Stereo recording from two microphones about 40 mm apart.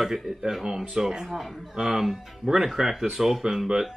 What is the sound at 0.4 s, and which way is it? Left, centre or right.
Speech, centre.